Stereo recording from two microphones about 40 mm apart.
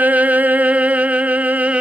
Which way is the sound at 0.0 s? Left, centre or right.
Right.